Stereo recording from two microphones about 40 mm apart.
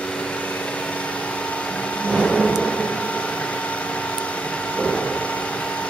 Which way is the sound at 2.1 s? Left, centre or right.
Left.